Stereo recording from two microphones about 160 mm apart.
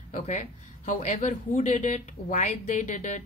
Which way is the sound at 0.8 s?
50° left (ahead or behind).